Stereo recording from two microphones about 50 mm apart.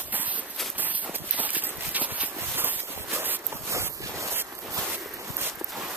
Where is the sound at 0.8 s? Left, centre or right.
Right.